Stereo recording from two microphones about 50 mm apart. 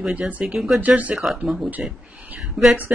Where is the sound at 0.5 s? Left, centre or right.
Centre.